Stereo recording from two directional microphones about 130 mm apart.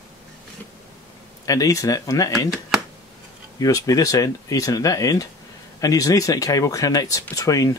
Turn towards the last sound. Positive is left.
turn(degrees=25)  # may be behind; listen again after turning